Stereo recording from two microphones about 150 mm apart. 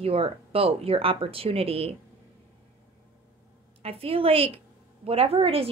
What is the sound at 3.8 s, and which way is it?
A woman's voice, 40° right (ahead or behind).